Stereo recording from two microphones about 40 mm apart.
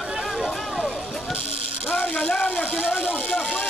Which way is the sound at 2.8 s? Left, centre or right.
Left.